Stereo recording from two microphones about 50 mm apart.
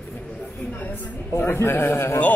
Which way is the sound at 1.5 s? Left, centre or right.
Left.